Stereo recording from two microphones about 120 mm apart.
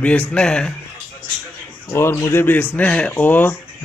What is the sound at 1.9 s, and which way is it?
A man's voice, 20° left (ahead or behind).